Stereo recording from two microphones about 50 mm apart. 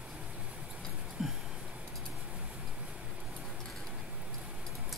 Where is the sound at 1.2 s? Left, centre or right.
Centre.